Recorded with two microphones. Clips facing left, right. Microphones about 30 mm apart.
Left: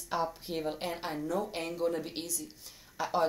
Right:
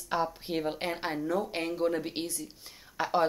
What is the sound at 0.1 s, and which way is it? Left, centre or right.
A woman's voice, centre.